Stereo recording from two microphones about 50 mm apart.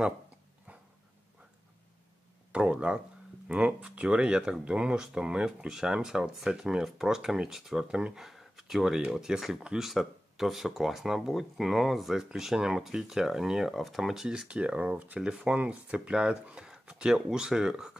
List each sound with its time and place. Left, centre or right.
2.5 s speech: right
8.1 s a sound: centre
9.1 s speech: centre
14.2 s speech: centre
15.1 s speech: centre